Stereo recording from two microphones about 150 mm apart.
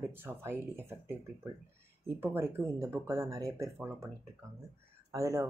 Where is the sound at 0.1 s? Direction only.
15° right (ahead or behind).